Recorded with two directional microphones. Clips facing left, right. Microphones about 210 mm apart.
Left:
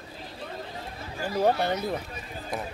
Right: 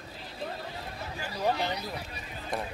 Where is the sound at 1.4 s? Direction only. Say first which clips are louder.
Left 6 dB; 55° left (ahead or behind).